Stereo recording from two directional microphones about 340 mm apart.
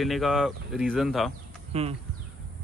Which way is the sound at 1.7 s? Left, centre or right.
Centre.